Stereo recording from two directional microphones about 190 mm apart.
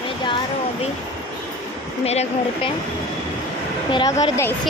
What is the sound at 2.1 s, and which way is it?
Speech, 35° left (ahead or behind).